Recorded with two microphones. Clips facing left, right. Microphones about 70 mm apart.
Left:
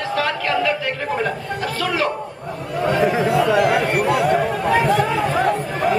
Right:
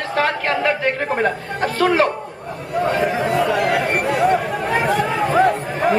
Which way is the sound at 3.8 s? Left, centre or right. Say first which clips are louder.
Even; right.